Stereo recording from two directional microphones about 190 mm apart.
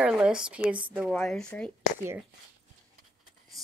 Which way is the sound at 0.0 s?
5° right (ahead or behind).